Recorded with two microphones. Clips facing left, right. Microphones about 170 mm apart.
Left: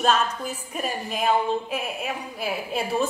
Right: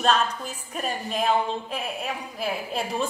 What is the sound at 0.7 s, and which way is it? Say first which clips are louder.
Speech: right 1 dB; 5° left (ahead or behind).